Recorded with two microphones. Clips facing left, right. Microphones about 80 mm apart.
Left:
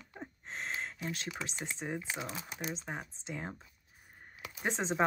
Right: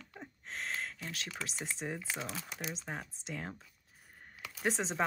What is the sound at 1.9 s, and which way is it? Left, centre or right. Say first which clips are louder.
Speech: left 3 dB; centre.